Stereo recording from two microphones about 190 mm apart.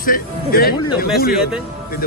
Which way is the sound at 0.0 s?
50° left (ahead or behind).